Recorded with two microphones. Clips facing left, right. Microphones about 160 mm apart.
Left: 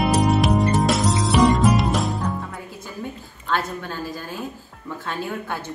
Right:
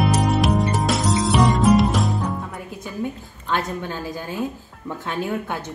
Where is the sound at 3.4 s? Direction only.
15° right (ahead or behind).